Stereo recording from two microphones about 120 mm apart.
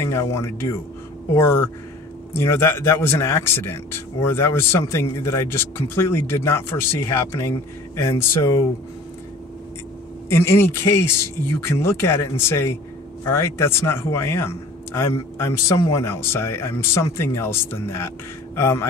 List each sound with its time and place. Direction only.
0.0 s speech: 20° left (ahead or behind)
10.3 s speech: 20° left (ahead or behind)